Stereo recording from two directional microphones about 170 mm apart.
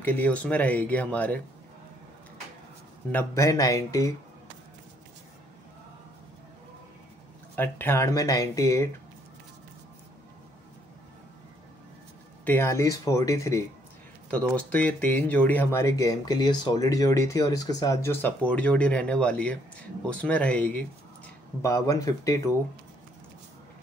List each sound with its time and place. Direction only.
0.0 s speech: 10° left (ahead or behind)
3.1 s speech: 15° left (ahead or behind)
7.5 s speech: 10° left (ahead or behind)
12.4 s speech: 15° left (ahead or behind)
21.5 s speech: 20° left (ahead or behind)